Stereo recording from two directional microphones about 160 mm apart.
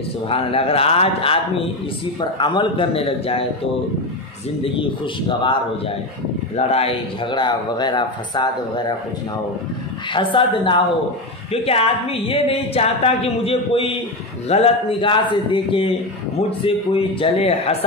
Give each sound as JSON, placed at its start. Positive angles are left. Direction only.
{"t": 0.3, "sound": "a woman's voice", "side_deg": 35}
{"t": 4.7, "sound": "a woman's voice", "side_deg": 30}
{"t": 10.1, "sound": "a woman's voice", "side_deg": 30}